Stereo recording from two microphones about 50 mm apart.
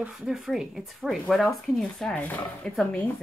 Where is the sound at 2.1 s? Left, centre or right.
Left.